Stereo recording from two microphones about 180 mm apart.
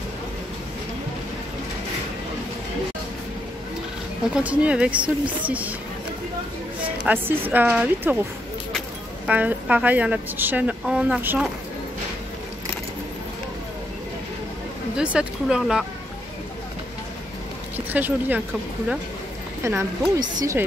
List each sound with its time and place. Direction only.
4.3 s speech: 5° right (ahead or behind)
7.0 s a woman's voice: 10° right (ahead or behind)
15.0 s speech: 5° right (ahead or behind)
17.9 s speech: 10° right (ahead or behind)
19.8 s speech: 20° right (ahead or behind)